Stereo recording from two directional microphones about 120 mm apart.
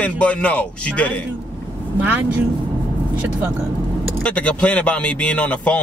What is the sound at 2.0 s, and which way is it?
Speech, 15° right (ahead or behind).